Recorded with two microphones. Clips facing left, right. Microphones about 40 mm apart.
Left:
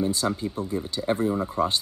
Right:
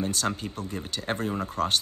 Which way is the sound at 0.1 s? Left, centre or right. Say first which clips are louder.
Left 3 dB; right.